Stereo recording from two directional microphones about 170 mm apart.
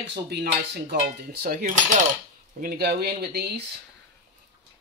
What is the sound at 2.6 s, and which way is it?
Speech, 65° right (ahead or behind).